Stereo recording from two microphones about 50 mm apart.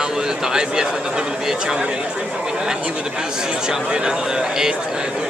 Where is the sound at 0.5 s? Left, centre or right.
Centre.